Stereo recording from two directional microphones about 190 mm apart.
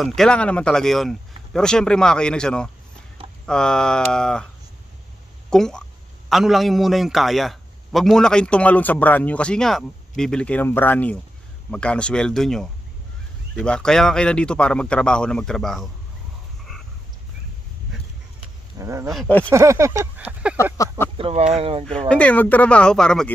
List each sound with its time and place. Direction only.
0.0 s a man's voice: centre (ahead or behind)
5.5 s a man's voice: 5° left (ahead or behind)
18.8 s a sound: 15° right (ahead or behind)
19.1 s speech: 5° left (ahead or behind)
19.5 s a sound: 15° right (ahead or behind)
21.2 s speech: 30° right (ahead or behind)
21.8 s a man's voice: 5° left (ahead or behind)